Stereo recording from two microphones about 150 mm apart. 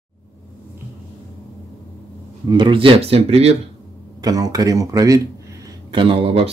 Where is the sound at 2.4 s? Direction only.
30° right (ahead or behind).